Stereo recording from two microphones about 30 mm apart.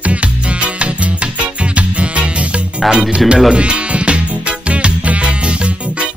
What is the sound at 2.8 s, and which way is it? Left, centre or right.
Music, centre.